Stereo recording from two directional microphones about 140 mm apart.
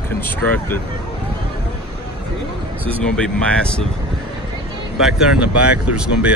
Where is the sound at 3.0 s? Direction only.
5° left (ahead or behind).